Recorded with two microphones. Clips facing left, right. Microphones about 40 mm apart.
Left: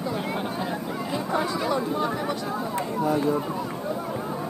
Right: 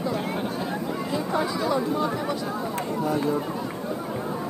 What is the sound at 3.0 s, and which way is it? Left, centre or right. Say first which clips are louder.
Speech: left 2 dB; centre.